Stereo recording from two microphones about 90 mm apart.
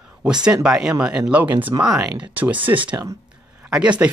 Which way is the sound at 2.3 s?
20° right (ahead or behind).